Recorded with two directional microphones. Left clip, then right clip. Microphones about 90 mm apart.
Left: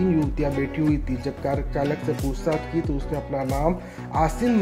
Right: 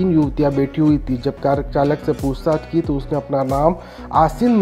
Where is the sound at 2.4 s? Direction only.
30° right (ahead or behind).